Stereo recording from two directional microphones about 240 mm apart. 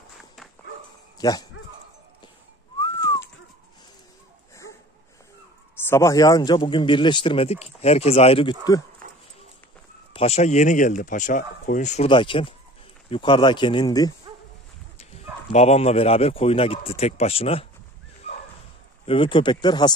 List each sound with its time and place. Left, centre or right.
1.1 s speech: centre
2.8 s whistling: centre
5.9 s speech: centre
10.1 s speech: left
15.0 s speech: left
19.0 s speech: left